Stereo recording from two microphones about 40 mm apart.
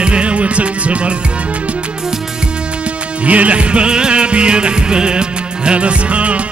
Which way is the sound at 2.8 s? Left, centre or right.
Right.